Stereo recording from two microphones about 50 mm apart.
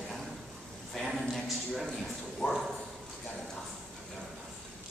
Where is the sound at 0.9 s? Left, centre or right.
Centre.